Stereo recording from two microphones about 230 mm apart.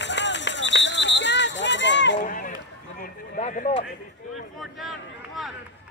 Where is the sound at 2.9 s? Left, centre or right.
Left.